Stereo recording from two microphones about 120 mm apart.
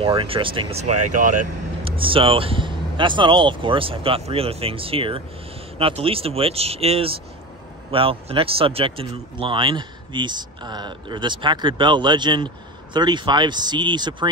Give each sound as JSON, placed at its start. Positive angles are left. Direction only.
{"t": 0.0, "sound": "speech", "side_deg": -50}
{"t": 0.8, "sound": "speech", "side_deg": -85}
{"t": 1.9, "sound": "speech", "side_deg": -50}